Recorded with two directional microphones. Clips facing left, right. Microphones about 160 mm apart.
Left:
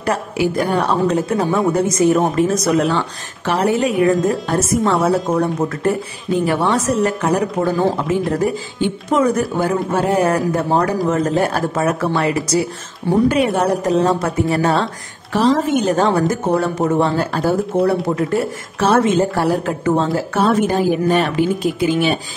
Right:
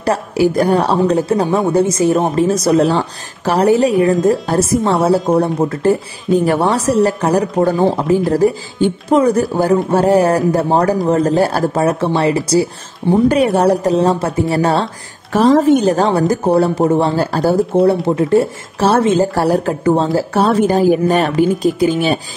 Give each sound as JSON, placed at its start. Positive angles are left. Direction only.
{"t": 0.0, "sound": "speech", "side_deg": -35}
{"t": 6.3, "sound": "speech", "side_deg": -40}